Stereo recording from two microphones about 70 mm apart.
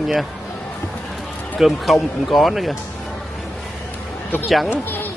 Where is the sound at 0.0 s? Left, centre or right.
Centre.